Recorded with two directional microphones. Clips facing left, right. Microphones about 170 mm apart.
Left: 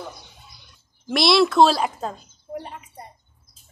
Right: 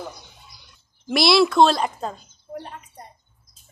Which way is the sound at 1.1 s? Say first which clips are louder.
Even; centre (ahead or behind).